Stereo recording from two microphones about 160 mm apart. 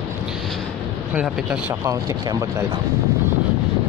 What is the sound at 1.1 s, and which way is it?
Speech, 10° right (ahead or behind).